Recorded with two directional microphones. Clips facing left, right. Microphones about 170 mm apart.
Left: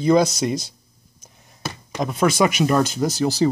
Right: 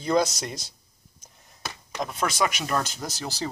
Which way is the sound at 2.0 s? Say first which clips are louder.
Left 8 dB; 5° left (ahead or behind).